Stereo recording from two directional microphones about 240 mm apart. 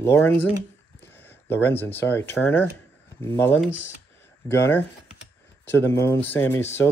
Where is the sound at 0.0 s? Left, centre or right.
Centre.